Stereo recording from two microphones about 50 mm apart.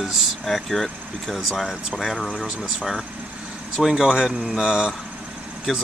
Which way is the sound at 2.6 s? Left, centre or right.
Centre.